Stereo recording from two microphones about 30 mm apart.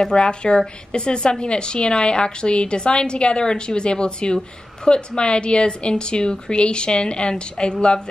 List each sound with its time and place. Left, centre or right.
0.0 s a woman's voice: left